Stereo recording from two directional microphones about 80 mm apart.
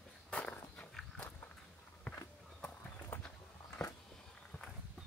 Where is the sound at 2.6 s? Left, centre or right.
Left.